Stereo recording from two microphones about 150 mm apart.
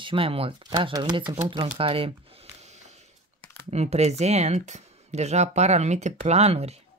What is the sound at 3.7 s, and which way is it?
Speech, 45° right (ahead or behind).